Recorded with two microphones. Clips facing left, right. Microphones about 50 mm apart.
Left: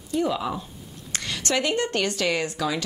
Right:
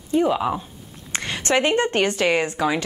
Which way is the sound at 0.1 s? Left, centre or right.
Right.